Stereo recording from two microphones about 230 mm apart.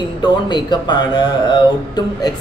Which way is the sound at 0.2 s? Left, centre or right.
Centre.